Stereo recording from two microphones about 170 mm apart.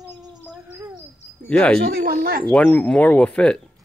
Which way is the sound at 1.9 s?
65° right (ahead or behind).